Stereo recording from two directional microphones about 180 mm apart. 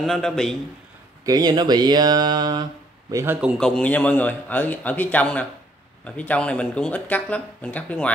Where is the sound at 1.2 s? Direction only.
20° right (ahead or behind).